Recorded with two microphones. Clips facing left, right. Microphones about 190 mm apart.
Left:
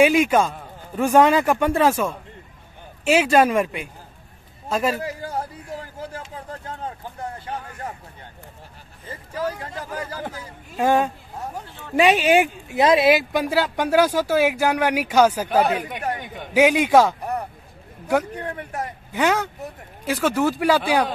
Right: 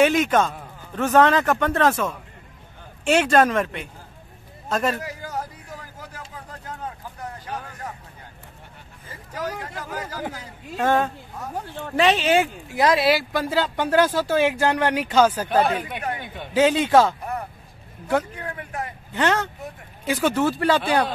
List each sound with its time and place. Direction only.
0.0 s speech: 10° left (ahead or behind)
5.0 s a sound: 30° left (ahead or behind)
9.3 s speech: 30° left (ahead or behind)
10.8 s speech: 10° left (ahead or behind)
11.5 s speech: 55° right (ahead or behind)
12.0 s speech: 15° left (ahead or behind)
17.2 s a sound: 40° left (ahead or behind)
18.4 s speech: 40° left (ahead or behind)
19.1 s speech: 10° left (ahead or behind)